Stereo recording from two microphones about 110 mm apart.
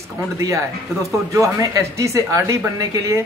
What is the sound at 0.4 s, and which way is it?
Speech, 30° right (ahead or behind).